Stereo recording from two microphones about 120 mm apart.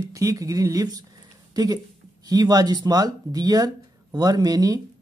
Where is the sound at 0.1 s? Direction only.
30° right (ahead or behind).